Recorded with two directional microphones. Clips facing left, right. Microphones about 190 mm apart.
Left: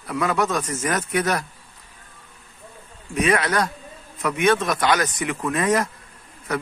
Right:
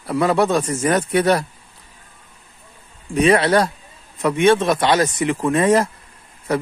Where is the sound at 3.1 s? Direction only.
30° right (ahead or behind).